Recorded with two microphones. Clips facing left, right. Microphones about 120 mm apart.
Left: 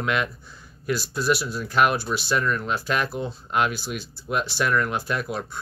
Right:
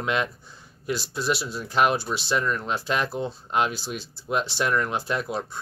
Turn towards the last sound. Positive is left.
turn(degrees=-25)  # may be behind; listen again after turning